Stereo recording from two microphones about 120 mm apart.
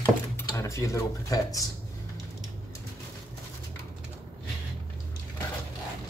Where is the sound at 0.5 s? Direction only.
25° left (ahead or behind).